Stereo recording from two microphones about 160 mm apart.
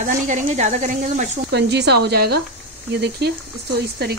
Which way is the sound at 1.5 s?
90° right.